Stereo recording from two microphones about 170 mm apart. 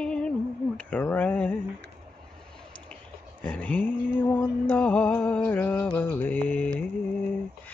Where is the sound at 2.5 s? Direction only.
5° left (ahead or behind).